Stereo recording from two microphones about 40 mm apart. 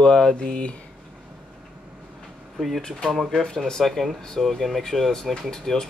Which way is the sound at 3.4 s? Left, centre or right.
Centre.